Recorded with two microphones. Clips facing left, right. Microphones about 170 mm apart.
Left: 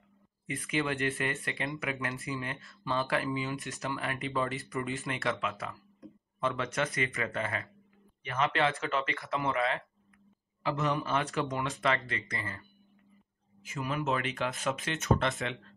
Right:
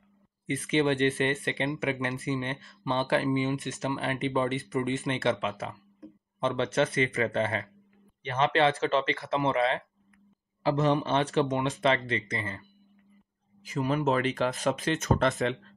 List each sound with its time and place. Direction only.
0.5 s speech: 25° right (ahead or behind)
13.6 s speech: 35° right (ahead or behind)